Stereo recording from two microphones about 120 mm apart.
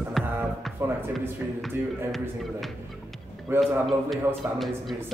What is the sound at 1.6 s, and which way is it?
A man's voice, centre (ahead or behind).